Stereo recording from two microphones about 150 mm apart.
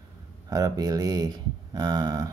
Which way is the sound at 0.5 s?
25° right (ahead or behind).